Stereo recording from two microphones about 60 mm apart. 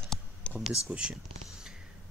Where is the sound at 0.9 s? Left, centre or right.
Right.